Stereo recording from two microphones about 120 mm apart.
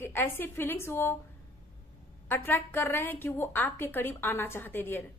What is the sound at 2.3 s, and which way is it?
A woman's voice, 15° left (ahead or behind).